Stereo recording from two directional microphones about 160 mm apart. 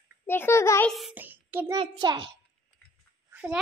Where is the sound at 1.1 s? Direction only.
10° right (ahead or behind).